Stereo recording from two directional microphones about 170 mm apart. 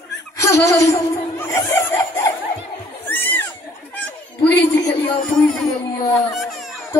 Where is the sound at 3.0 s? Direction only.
10° left (ahead or behind).